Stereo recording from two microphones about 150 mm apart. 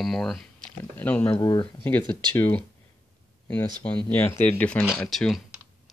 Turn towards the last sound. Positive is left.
turn(degrees=0)  # may be behind; listen again after turning